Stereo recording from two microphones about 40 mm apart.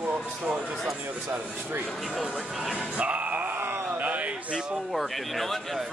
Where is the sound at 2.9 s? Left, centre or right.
Right.